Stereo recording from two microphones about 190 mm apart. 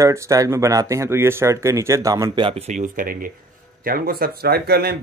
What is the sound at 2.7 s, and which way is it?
Speech, 45° right (ahead or behind).